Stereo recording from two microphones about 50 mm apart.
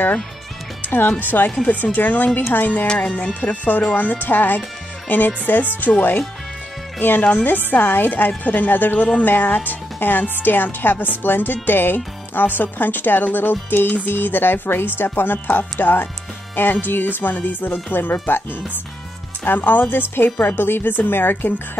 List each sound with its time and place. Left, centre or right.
0.8 s speech: left
19.4 s a woman's voice: left